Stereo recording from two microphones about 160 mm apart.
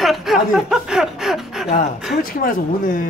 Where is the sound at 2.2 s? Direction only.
60° left (ahead or behind).